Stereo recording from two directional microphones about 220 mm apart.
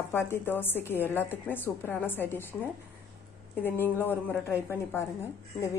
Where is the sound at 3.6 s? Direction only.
10° left (ahead or behind).